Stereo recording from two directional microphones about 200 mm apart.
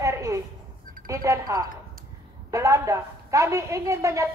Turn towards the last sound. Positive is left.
turn(degrees=-15)  # may be behind; listen again after turning